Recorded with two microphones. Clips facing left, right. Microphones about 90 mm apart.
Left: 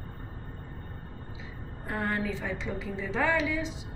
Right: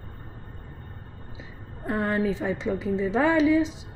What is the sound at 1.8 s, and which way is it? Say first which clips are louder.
Speech: right 6 dB; 25° right (ahead or behind).